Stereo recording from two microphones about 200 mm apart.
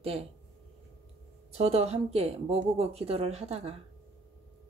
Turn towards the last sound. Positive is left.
turn(degrees=-30)  # may be behind; listen again after turning